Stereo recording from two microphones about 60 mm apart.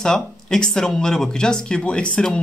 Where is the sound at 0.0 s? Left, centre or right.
Centre.